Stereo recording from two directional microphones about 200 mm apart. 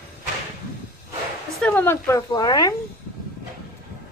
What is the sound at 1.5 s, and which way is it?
Speech, 5° left (ahead or behind).